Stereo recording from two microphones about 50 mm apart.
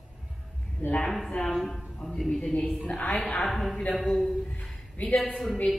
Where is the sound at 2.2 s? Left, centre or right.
Centre.